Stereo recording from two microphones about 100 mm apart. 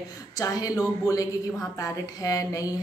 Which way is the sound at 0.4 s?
35° left (ahead or behind).